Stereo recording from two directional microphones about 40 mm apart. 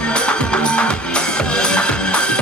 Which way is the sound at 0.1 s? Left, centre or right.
Left.